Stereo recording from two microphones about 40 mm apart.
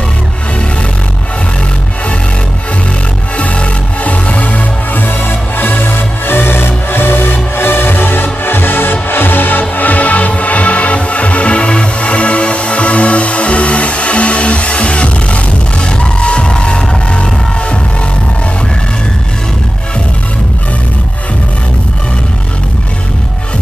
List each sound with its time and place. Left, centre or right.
3.3 s music: left